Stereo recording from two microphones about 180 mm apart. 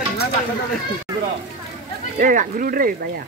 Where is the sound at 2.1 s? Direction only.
50° right (ahead or behind).